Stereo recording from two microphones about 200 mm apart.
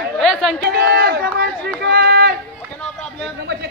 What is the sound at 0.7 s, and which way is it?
Speech, 50° right (ahead or behind).